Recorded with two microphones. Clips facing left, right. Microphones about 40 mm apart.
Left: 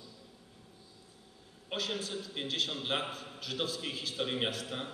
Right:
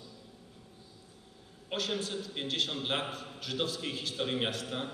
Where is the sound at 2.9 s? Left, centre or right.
Centre.